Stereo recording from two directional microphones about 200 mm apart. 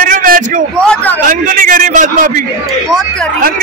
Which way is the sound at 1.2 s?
40° right (ahead or behind).